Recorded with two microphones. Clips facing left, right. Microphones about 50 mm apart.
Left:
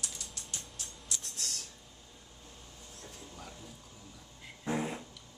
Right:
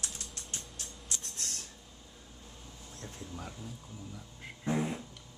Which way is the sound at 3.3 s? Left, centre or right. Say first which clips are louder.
Right 4 dB; centre.